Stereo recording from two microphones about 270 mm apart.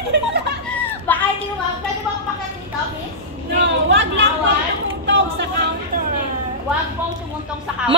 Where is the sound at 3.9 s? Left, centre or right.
Right.